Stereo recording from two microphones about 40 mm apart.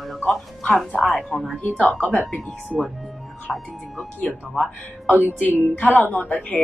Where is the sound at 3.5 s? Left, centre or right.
Centre.